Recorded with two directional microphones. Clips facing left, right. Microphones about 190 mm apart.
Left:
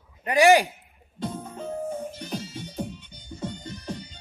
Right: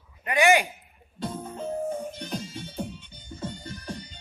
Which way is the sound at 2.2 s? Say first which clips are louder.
Even; centre (ahead or behind).